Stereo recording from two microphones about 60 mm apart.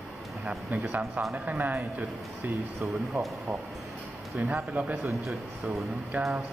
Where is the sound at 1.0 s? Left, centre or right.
Centre.